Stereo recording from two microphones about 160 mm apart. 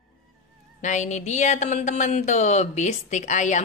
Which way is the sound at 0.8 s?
50° left (ahead or behind).